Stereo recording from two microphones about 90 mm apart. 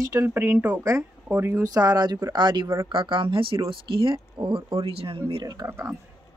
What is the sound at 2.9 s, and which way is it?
Speech, 70° right (ahead or behind).